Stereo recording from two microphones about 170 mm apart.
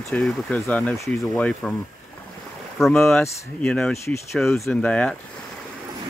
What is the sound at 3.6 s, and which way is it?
Speech, 5° left (ahead or behind).